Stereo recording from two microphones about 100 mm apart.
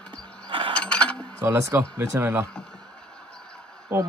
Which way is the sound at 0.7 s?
10° left (ahead or behind).